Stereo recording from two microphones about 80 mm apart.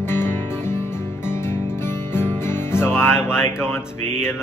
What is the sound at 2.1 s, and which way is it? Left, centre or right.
Music, left.